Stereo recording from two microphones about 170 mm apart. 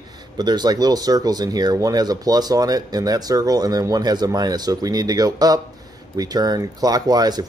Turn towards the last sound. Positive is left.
turn(degrees=-25)  # may be behind; listen again after turning